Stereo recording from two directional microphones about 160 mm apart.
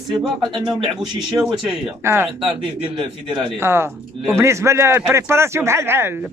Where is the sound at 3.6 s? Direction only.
15° right (ahead or behind).